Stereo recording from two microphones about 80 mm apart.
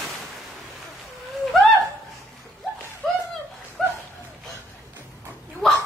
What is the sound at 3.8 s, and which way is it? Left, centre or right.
Dog, centre.